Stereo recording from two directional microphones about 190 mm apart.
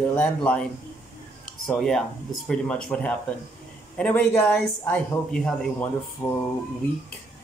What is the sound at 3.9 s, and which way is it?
Speech, 5° left (ahead or behind).